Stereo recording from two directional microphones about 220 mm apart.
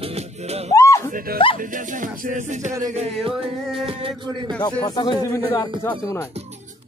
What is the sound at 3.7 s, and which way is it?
Music, 25° right (ahead or behind).